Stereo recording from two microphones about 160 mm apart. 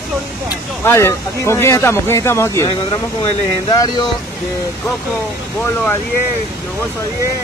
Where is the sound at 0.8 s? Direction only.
15° left (ahead or behind).